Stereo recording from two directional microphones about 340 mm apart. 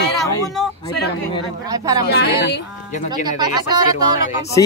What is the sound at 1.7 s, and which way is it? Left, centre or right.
Speech, centre.